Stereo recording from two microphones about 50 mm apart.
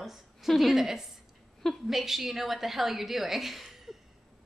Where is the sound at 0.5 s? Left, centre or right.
Centre.